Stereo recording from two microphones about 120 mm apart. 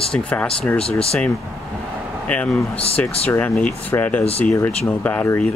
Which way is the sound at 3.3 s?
20° left (ahead or behind).